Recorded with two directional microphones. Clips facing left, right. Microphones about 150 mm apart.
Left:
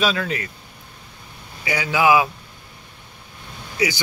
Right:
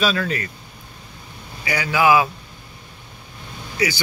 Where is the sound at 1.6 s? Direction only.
20° left (ahead or behind).